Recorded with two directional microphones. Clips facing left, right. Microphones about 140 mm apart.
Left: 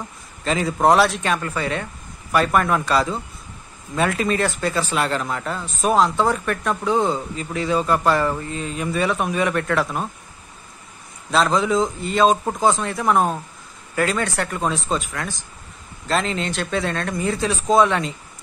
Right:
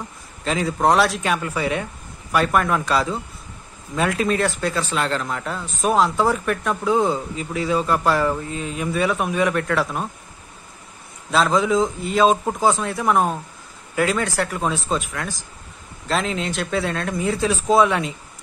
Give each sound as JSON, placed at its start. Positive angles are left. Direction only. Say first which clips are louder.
{"t": 0.4, "sound": "speech", "louder": "left 1 dB", "side_deg": 0}
{"t": 11.3, "sound": "speech", "louder": "even", "side_deg": 0}